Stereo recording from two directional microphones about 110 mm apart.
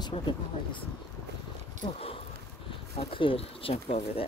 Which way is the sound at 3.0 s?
55° left (ahead or behind).